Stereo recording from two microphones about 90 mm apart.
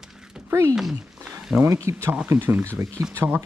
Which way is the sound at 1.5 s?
30° right (ahead or behind).